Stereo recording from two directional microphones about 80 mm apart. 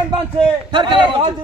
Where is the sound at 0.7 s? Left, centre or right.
Right.